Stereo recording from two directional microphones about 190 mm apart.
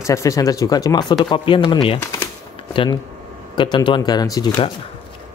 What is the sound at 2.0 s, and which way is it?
Speech, 15° left (ahead or behind).